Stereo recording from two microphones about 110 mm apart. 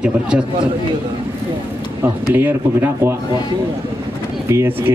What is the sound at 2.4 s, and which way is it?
Speech, 15° right (ahead or behind).